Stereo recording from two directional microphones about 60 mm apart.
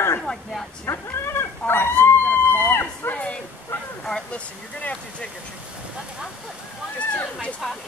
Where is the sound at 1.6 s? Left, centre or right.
Left.